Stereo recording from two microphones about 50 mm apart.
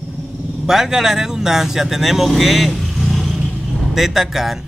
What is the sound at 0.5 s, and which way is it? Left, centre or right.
A man's voice, centre.